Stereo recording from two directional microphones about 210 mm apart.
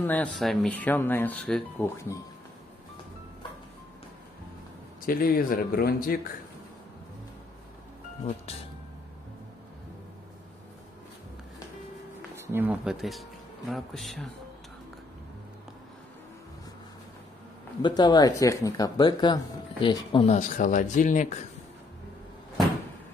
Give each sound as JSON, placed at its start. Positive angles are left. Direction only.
{"t": 0.0, "sound": "speech", "side_deg": 5}
{"t": 5.0, "sound": "speech", "side_deg": 45}
{"t": 12.4, "sound": "speech", "side_deg": -10}
{"t": 17.8, "sound": "speech", "side_deg": 20}